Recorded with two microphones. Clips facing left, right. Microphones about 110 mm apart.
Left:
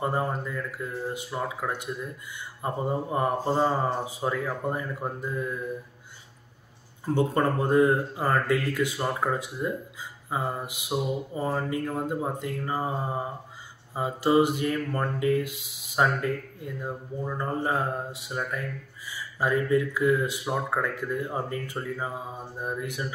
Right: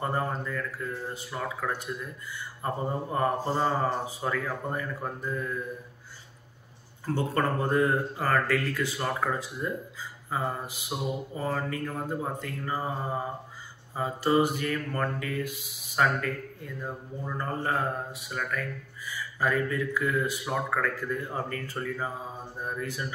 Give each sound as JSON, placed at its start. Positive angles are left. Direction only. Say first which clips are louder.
{"t": 0.0, "sound": "speech", "louder": "left 2 dB", "side_deg": 15}
{"t": 7.2, "sound": "speech", "louder": "left 3 dB", "side_deg": 20}
{"t": 13.9, "sound": "speech", "louder": "left 3 dB", "side_deg": 15}